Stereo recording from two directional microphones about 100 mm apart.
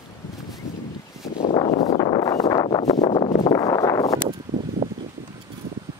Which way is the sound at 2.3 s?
40° left (ahead or behind).